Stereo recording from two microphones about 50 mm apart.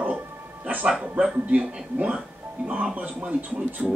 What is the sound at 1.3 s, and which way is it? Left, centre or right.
Speech, right.